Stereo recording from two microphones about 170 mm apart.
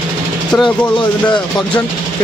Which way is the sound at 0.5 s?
5° left (ahead or behind).